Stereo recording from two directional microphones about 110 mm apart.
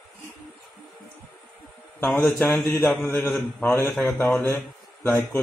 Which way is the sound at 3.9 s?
5° left (ahead or behind).